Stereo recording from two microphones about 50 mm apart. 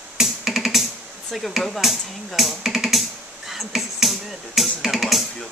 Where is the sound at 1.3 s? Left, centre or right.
Centre.